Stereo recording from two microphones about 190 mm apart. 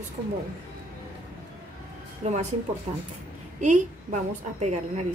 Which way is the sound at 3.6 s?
40° right (ahead or behind).